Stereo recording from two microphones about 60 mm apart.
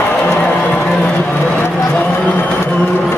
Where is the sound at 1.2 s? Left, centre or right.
Left.